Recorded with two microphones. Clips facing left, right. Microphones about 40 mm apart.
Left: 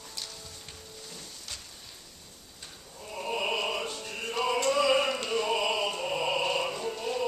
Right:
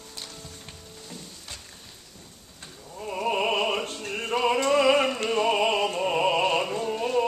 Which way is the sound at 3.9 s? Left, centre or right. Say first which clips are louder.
Right 5 dB; right.